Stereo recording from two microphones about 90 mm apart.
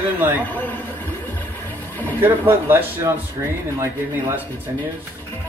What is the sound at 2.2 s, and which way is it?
Speech, 25° right (ahead or behind).